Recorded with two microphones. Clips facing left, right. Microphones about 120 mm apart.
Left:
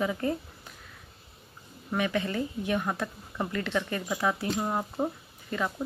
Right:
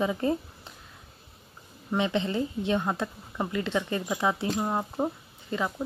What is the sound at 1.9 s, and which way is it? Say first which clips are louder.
A woman's voice: right 2 dB; 25° right (ahead or behind).